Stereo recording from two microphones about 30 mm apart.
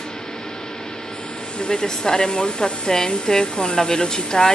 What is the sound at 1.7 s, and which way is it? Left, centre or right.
Speech, left.